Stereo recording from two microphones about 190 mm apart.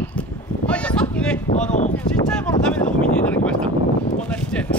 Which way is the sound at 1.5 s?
40° left (ahead or behind).